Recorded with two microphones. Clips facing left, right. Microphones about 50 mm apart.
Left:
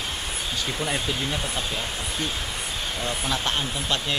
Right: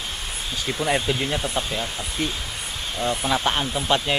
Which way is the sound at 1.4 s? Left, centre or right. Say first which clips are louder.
Right 3 dB; centre.